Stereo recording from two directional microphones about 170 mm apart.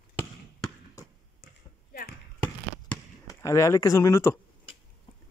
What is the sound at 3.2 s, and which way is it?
Speech, 20° left (ahead or behind).